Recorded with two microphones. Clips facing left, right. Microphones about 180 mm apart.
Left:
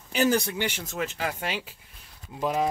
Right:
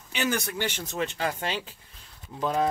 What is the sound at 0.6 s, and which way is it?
Speech, 10° left (ahead or behind).